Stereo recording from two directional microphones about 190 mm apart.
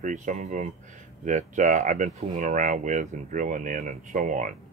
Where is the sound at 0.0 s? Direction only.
40° right (ahead or behind).